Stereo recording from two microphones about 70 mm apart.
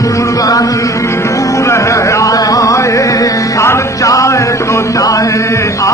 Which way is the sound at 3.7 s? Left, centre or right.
Left.